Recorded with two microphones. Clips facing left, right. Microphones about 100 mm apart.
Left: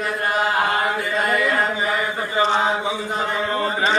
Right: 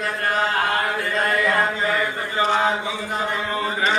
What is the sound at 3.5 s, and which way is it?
Chant, 30° left (ahead or behind).